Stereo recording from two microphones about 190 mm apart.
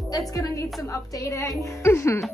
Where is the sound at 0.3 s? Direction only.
15° left (ahead or behind).